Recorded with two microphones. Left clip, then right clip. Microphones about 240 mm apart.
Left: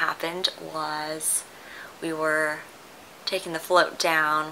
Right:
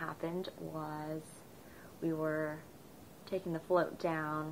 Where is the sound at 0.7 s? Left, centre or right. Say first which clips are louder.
Left 13 dB; left.